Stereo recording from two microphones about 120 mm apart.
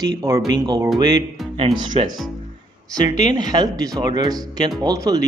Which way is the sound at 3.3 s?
35° right (ahead or behind).